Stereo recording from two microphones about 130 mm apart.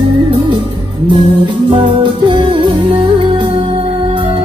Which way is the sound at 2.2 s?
40° right (ahead or behind).